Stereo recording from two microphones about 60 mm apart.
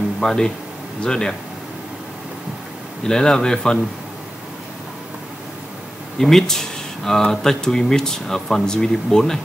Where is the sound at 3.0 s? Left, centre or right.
Centre.